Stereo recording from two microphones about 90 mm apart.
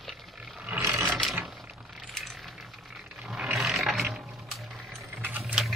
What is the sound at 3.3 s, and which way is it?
Ratchet, 10° right (ahead or behind).